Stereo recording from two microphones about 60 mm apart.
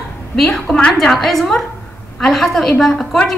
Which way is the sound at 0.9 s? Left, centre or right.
Centre.